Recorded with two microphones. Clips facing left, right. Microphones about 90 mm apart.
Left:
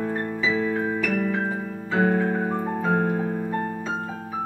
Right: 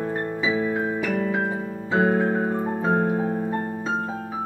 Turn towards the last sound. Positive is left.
turn(degrees=-30)  # may be behind; listen again after turning